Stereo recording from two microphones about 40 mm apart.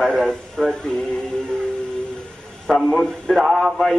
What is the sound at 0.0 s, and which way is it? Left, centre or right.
Speech, centre.